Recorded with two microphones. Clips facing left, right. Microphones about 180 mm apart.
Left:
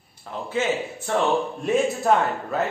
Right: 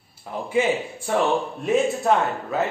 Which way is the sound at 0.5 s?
10° right (ahead or behind).